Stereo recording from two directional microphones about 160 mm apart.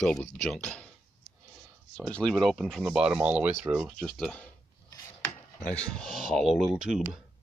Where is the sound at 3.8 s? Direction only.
5° left (ahead or behind).